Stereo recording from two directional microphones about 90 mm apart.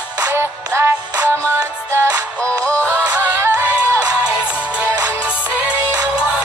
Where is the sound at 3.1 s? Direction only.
25° right (ahead or behind).